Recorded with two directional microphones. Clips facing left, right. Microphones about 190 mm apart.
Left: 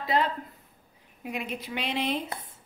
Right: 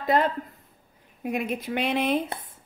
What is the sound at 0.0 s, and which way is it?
Speech, 50° right (ahead or behind).